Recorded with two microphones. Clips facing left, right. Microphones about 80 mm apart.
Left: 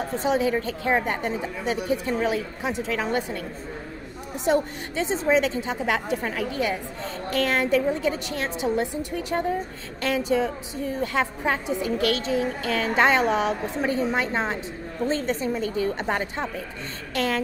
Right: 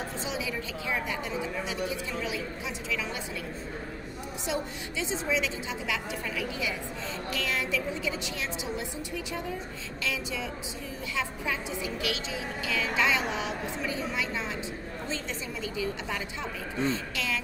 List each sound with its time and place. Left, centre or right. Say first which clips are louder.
0.1 s a woman's voice: left 11 dB; left
4.5 s a woman's voice: left 11 dB; left